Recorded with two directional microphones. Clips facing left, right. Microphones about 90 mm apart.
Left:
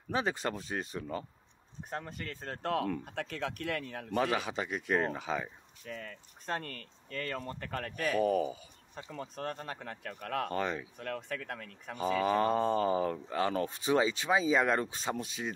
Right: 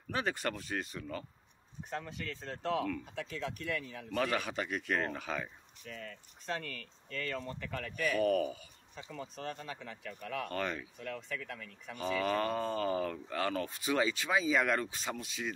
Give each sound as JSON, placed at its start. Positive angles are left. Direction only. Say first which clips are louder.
{"t": 0.1, "sound": "speech", "louder": "left 2 dB", "side_deg": 20}
{"t": 1.9, "sound": "speech", "louder": "even", "side_deg": 45}
{"t": 4.2, "sound": "speech", "louder": "left 2 dB", "side_deg": 20}
{"t": 5.9, "sound": "speech", "louder": "left 3 dB", "side_deg": 45}
{"t": 8.2, "sound": "speech", "louder": "left 1 dB", "side_deg": 20}
{"t": 9.1, "sound": "speech", "louder": "left 3 dB", "side_deg": 50}
{"t": 10.5, "sound": "speech", "louder": "left 3 dB", "side_deg": 20}
{"t": 11.0, "sound": "speech", "louder": "left 3 dB", "side_deg": 55}
{"t": 12.2, "sound": "speech", "louder": "left 5 dB", "side_deg": 25}